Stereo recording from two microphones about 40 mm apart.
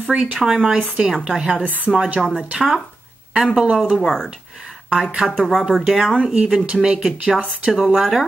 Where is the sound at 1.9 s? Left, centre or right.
Centre.